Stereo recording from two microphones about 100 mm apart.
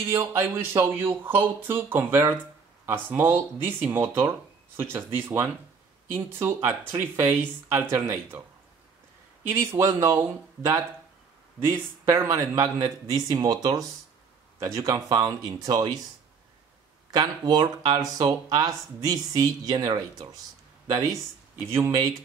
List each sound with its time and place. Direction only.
0.1 s speech: 25° right (ahead or behind)
9.5 s speech: 25° right (ahead or behind)
11.6 s speech: 25° right (ahead or behind); by 16.0 s 40° right (ahead or behind)
17.1 s speech: 40° right (ahead or behind)